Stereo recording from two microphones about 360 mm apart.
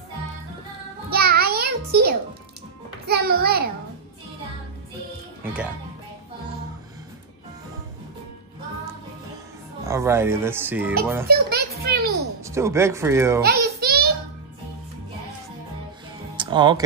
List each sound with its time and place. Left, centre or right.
1.1 s a sound: right
3.1 s a child's voice: right
9.8 s speech: centre
11.2 s music: right
12.4 s speech: centre
13.4 s a sound: right
16.3 s music: centre